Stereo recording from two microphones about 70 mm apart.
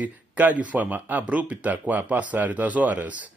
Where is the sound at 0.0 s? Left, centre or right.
Right.